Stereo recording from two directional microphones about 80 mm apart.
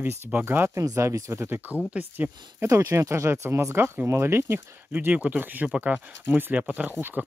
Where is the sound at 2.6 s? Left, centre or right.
Right.